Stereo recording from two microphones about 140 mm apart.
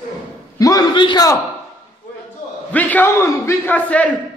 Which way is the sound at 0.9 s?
35° left (ahead or behind).